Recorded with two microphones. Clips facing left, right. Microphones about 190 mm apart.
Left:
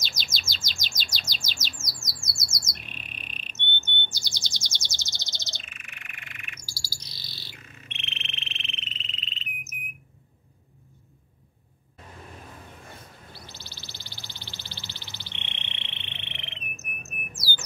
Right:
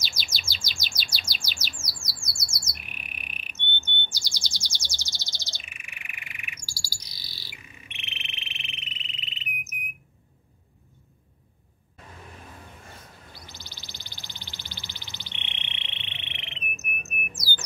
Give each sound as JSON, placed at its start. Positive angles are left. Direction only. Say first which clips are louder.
{"t": 0.0, "sound": "chirp", "louder": "left 1 dB", "side_deg": -10}
{"t": 2.0, "sound": "bird", "louder": "left 1 dB", "side_deg": -30}
{"t": 2.4, "sound": "bird", "louder": "left 2 dB", "side_deg": -10}
{"t": 13.3, "sound": "a sound", "louder": "left 1 dB", "side_deg": -15}